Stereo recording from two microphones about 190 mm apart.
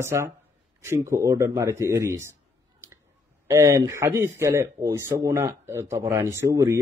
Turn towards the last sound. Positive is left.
turn(degrees=-15)  # may be behind; listen again after turning